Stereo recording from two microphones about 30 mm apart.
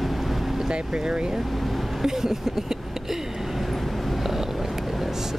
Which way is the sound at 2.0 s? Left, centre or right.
Centre.